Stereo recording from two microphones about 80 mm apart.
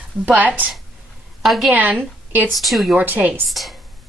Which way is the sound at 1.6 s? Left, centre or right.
Right.